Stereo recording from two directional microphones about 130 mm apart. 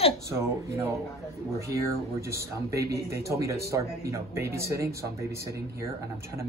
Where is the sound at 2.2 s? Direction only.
25° right (ahead or behind).